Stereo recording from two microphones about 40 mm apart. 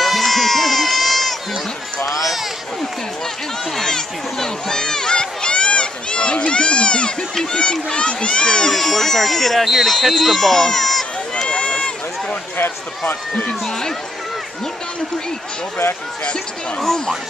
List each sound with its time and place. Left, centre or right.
0.0 s run: centre
3.7 s a sound: centre
7.5 s baby cry: left; by 9.7 s centre
9.7 s speech: centre
10.9 s run: centre
11.4 s run: left
13.5 s speech: centre
16.8 s speech: centre